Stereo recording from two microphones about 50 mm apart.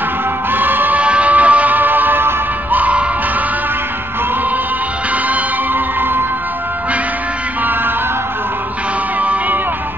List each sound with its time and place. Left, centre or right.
0.5 s music: right
1.0 s music: right
2.8 s music: right
9.2 s music: right